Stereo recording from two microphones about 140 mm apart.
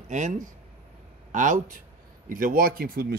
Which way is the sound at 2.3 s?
80° right.